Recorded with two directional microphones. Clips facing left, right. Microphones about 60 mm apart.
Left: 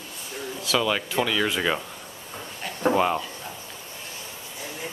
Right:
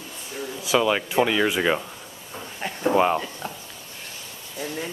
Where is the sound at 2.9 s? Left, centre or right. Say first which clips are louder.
Right 3 dB; centre.